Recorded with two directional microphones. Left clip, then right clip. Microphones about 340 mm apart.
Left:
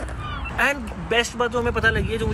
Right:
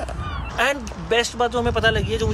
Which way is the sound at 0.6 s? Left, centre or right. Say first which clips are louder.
Right 1 dB; right.